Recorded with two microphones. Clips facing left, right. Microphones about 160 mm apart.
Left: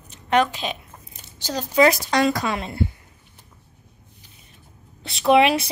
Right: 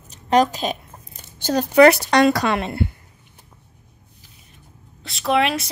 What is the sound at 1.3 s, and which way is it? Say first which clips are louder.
Speech: right 5 dB; 55° right (ahead or behind).